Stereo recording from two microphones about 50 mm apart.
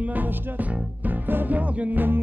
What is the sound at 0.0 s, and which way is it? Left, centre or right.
Music, right.